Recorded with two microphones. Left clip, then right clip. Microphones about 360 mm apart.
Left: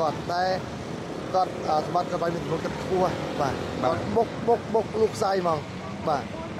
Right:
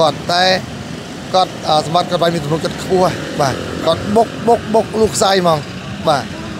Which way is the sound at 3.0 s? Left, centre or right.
Right.